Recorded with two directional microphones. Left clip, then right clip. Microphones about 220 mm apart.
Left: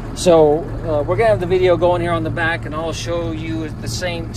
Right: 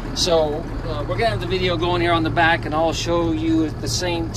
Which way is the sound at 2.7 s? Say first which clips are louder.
Right 3 dB; 15° right (ahead or behind).